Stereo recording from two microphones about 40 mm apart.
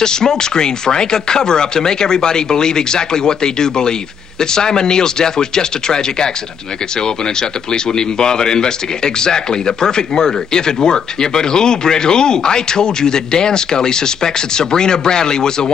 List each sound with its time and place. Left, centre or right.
0.0 s speech: centre